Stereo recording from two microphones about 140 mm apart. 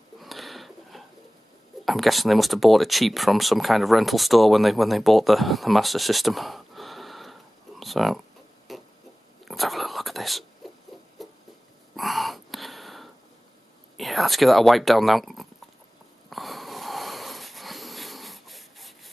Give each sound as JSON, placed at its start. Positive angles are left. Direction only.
{"t": 0.2, "sound": "bird", "side_deg": 0}
{"t": 1.9, "sound": "speech", "side_deg": 0}
{"t": 8.7, "sound": "a sound", "side_deg": 0}
{"t": 9.4, "sound": "whispering", "side_deg": 0}
{"t": 10.6, "sound": "rodents", "side_deg": 0}
{"t": 11.2, "sound": "a sound", "side_deg": 0}
{"t": 13.9, "sound": "speech", "side_deg": 0}
{"t": 16.3, "sound": "wheeze", "side_deg": 0}